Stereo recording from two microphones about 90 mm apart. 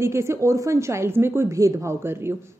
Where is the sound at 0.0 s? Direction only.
30° right (ahead or behind).